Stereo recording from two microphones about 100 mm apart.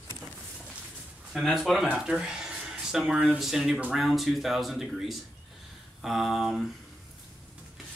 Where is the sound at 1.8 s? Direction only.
10° right (ahead or behind).